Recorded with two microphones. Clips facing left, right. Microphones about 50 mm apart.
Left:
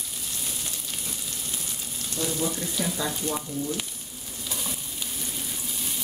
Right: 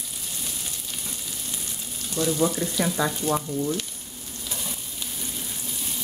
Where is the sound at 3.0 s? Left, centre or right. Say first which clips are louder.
Right 6 dB; right.